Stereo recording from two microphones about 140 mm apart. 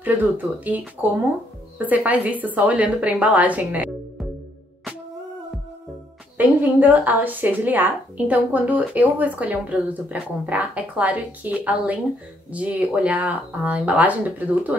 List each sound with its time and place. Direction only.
0.0 s a woman's voice: 10° right (ahead or behind)
6.3 s a woman's voice: 10° right (ahead or behind)